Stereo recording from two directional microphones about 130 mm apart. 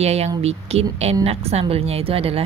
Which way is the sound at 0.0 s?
55° right (ahead or behind).